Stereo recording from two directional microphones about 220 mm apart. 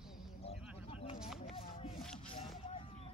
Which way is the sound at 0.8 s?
25° left (ahead or behind).